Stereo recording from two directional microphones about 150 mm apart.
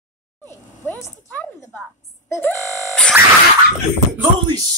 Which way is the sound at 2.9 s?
Centre (ahead or behind).